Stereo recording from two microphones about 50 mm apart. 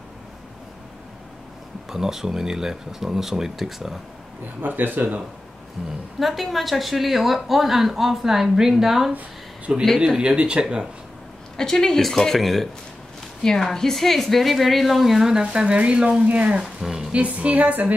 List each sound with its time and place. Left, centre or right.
1.9 s speech: centre
4.6 s speech: right
5.8 s speech: centre
6.1 s a woman's voice: centre
9.7 s speech: right
11.5 s a woman's voice: centre
15.4 s speech: right
16.8 s music: centre
17.1 s speech: right